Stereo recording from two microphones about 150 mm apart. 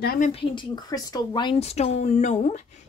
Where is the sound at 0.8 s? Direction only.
25° left (ahead or behind).